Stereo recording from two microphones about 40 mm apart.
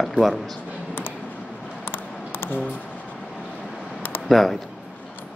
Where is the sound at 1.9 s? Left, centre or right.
Left.